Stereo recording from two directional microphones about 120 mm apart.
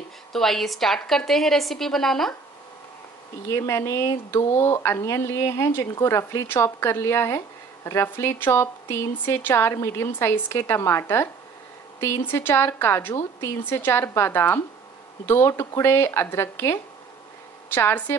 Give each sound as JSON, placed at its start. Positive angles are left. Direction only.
{"t": 0.3, "sound": "a woman's voice", "side_deg": 5}
{"t": 3.4, "sound": "a woman's voice", "side_deg": 25}